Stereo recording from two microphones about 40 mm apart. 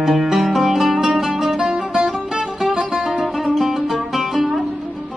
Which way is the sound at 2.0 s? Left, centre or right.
Centre.